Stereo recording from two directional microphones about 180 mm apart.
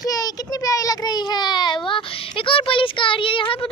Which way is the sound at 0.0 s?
20° left (ahead or behind).